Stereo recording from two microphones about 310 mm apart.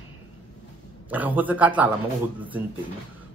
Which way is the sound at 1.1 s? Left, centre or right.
Centre.